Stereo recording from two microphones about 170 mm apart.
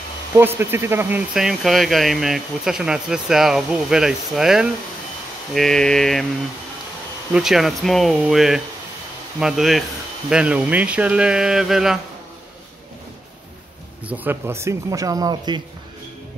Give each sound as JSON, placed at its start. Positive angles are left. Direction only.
{"t": 0.4, "sound": "speech", "side_deg": -10}
{"t": 7.3, "sound": "speech", "side_deg": 0}
{"t": 14.0, "sound": "speech", "side_deg": -10}